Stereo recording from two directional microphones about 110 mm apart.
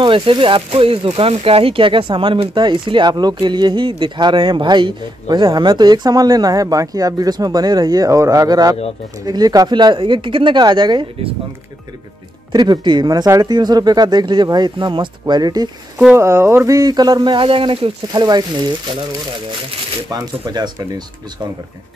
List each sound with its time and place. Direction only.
0.0 s speech: 50° right (ahead or behind)
12.5 s speech: 40° right (ahead or behind)
16.2 s speech: 25° right (ahead or behind); by 17.9 s 55° right (ahead or behind)
18.1 s speech: 40° right (ahead or behind)
20.4 s speech: 40° right (ahead or behind)